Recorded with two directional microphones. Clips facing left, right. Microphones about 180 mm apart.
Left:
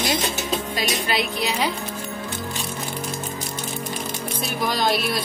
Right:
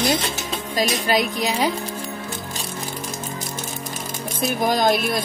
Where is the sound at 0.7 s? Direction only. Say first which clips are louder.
Right 8 dB; 45° right (ahead or behind).